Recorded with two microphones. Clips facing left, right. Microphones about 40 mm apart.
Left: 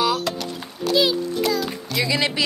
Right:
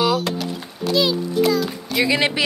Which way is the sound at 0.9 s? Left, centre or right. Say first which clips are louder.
Right 1 dB; centre.